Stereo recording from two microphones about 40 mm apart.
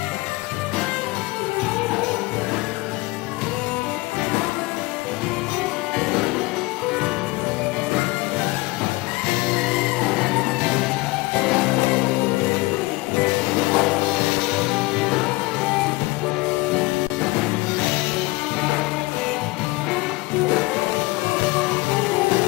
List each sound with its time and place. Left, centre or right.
5.9 s music: centre
9.6 s music: centre
13.7 s music: centre
16.7 s music: centre